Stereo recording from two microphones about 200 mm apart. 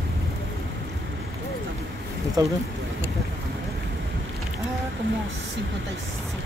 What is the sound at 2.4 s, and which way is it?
Speech, 15° right (ahead or behind).